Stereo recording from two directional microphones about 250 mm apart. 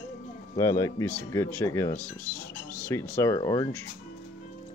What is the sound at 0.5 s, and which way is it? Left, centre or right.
Speech, centre.